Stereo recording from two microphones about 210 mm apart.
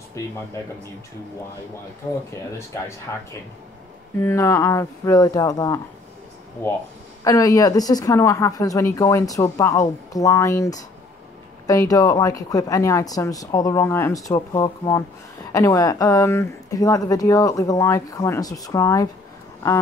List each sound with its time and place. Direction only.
4.2 s speech: 10° left (ahead or behind)
7.2 s speech: 15° left (ahead or behind)